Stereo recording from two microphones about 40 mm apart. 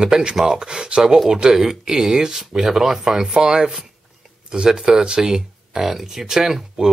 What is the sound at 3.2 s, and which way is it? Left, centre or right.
Speech, right.